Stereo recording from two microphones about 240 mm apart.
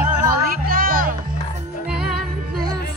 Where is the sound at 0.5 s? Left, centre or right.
Right.